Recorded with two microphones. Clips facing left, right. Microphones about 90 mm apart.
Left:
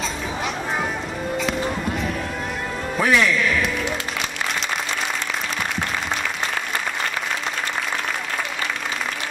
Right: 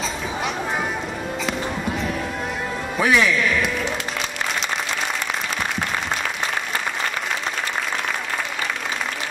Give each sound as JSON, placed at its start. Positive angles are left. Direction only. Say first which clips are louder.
{"t": 1.4, "sound": "music", "louder": "left 1 dB", "side_deg": 0}